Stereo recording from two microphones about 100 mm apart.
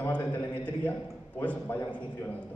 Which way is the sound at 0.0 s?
20° left (ahead or behind).